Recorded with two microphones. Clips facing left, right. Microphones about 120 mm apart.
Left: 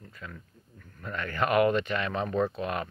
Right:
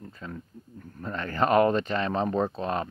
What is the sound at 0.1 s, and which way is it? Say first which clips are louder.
Speech: right 5 dB; 30° right (ahead or behind).